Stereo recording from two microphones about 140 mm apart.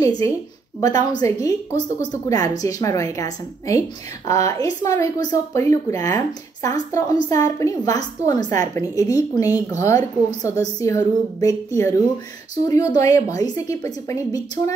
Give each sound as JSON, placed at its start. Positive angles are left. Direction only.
{"t": 0.2, "sound": "speech", "side_deg": 20}